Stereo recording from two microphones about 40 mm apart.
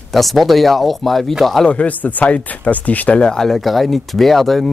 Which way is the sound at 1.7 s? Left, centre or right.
Left.